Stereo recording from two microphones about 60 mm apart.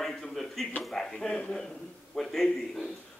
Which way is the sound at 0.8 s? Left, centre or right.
Centre.